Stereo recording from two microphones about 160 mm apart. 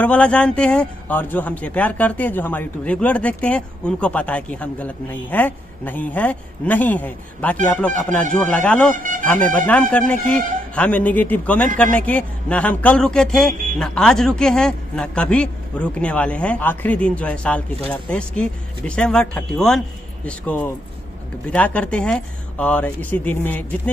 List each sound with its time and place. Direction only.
0.0 s speech: 10° left (ahead or behind)
8.9 s speech: 55° right (ahead or behind)
9.2 s speech: 10° left (ahead or behind)